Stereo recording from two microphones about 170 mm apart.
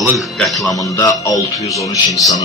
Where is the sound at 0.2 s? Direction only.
Centre (ahead or behind).